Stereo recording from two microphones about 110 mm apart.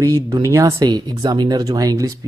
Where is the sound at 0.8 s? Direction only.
40° right (ahead or behind).